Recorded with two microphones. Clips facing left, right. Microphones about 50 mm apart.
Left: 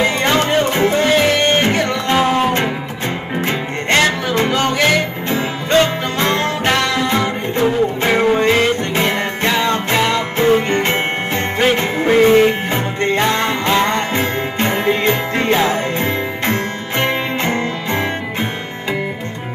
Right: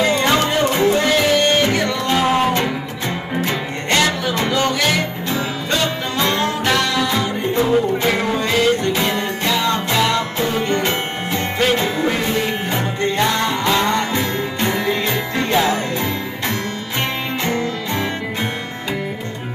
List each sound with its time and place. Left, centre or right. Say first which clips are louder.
0.0 s music: left 1 dB; left
2.2 s music: left 1 dB; centre
3.3 s music: left 2 dB; left
8.4 s music: left 2 dB; left